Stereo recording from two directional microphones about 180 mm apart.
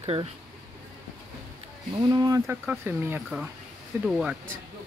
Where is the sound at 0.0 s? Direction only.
35° right (ahead or behind).